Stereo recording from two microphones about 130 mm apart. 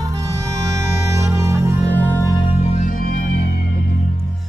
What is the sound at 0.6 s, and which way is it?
Music, 25° right (ahead or behind).